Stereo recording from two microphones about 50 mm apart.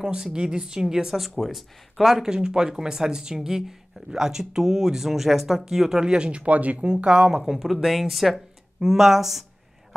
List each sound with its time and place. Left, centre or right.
0.0 s speech: centre
7.5 s speech: centre